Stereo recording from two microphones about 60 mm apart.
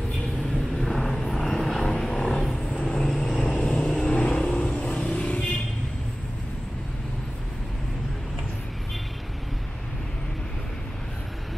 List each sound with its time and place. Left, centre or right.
0.7 s vehicle: centre
2.5 s vehicle: centre